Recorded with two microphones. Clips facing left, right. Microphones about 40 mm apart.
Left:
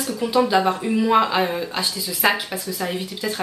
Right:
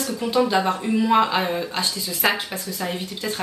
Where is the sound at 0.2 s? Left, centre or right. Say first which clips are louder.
Left 2 dB; centre.